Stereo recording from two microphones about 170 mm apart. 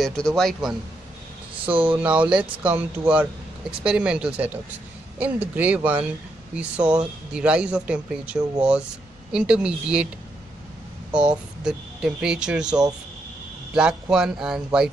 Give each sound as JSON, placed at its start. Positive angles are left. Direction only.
{"t": 0.0, "sound": "speech", "side_deg": 0}
{"t": 1.6, "sound": "speech", "side_deg": -30}
{"t": 1.9, "sound": "a man's voice", "side_deg": -10}
{"t": 11.1, "sound": "speech", "side_deg": -5}
{"t": 14.1, "sound": "speech", "side_deg": -5}